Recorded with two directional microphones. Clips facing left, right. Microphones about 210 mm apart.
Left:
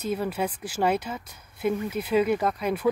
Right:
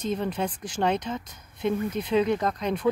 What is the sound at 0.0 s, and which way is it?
Speech, 10° left (ahead or behind).